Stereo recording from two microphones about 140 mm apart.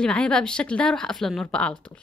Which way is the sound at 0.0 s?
5° left (ahead or behind).